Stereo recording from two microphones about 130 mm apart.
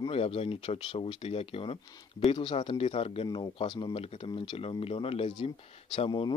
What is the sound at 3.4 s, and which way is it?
Speech, 35° left (ahead or behind).